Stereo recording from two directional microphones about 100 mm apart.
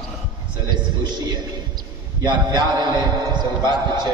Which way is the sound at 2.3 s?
50° right (ahead or behind).